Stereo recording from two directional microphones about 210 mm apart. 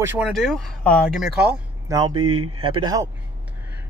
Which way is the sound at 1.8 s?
20° right (ahead or behind).